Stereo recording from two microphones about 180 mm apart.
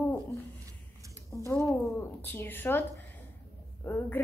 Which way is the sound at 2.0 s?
10° left (ahead or behind).